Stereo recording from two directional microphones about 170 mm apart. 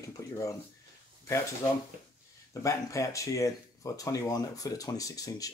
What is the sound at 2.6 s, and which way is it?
Speech, 20° left (ahead or behind).